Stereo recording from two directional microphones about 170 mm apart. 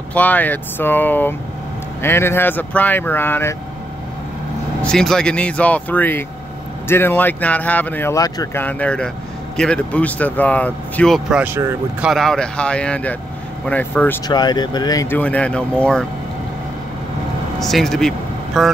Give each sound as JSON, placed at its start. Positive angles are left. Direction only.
{"t": 0.1, "sound": "speech", "side_deg": 10}
{"t": 4.8, "sound": "speech", "side_deg": 5}
{"t": 8.6, "sound": "speech", "side_deg": 10}
{"t": 12.1, "sound": "speech", "side_deg": 5}
{"t": 14.2, "sound": "speech", "side_deg": 25}
{"t": 15.1, "sound": "speech", "side_deg": 10}
{"t": 17.6, "sound": "speech", "side_deg": 0}